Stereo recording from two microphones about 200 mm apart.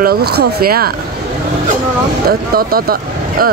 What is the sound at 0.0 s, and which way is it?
Speech, 50° right (ahead or behind).